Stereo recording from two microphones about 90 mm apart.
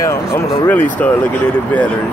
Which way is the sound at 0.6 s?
20° left (ahead or behind).